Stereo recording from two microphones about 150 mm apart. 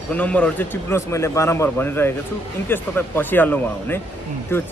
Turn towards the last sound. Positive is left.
turn(degrees=15)  # may be behind; listen again after turning